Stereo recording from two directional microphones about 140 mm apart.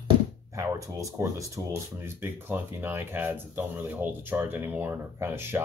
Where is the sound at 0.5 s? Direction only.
20° right (ahead or behind).